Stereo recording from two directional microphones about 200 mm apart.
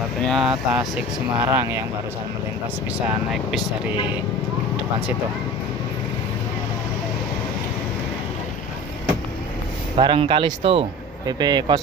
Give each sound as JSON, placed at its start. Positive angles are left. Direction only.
{"t": 0.2, "sound": "speech", "side_deg": 0}
{"t": 3.3, "sound": "speech", "side_deg": 0}
{"t": 9.9, "sound": "speech", "side_deg": -25}